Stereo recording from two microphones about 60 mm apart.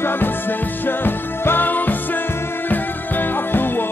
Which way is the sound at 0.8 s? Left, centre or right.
Left.